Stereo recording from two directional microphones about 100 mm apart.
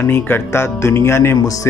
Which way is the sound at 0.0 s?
20° left (ahead or behind).